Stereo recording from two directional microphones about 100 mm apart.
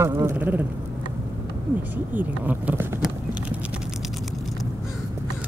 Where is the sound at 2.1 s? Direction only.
15° right (ahead or behind).